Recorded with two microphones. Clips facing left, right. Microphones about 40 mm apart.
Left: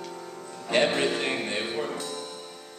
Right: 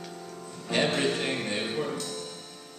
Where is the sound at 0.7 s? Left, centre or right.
Centre.